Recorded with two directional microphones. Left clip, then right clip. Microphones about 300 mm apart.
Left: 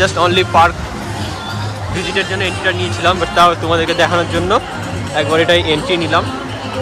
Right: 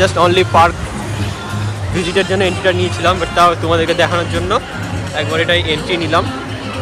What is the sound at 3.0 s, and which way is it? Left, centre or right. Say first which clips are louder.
Speech: left 1 dB; centre.